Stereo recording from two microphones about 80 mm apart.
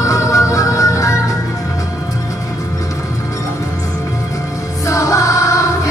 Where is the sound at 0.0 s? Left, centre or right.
Left.